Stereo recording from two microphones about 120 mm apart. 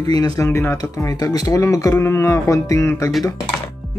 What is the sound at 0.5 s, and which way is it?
Speech, 20° left (ahead or behind).